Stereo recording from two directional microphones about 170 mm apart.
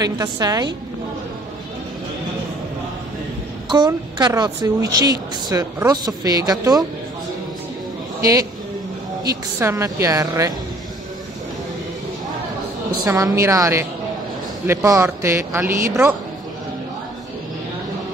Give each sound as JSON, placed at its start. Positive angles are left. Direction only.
{"t": 0.0, "sound": "speech", "side_deg": -20}
{"t": 3.7, "sound": "speech", "side_deg": -25}
{"t": 8.2, "sound": "speech", "side_deg": -20}
{"t": 9.6, "sound": "speech", "side_deg": -15}
{"t": 13.0, "sound": "speech", "side_deg": -20}